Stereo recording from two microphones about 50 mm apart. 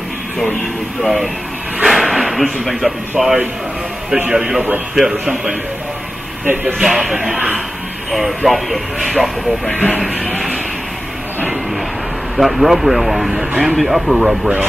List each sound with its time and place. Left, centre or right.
1.0 s speech: centre
4.6 s speech: right
4.9 s speech: centre
6.4 s speech: right
6.8 s speech: centre
9.8 s speech: left
12.4 s speech: centre